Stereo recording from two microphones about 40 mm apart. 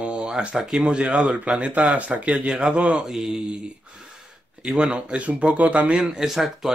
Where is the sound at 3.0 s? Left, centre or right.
Centre.